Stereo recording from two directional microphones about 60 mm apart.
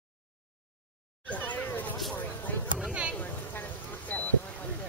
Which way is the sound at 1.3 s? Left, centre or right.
Left.